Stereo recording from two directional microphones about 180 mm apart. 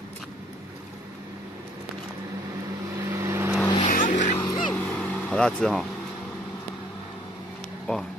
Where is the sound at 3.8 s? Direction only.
45° left (ahead or behind).